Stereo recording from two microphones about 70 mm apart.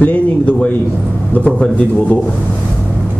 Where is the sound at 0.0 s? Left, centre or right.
Centre.